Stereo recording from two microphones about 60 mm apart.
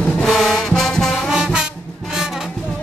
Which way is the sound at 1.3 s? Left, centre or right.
Centre.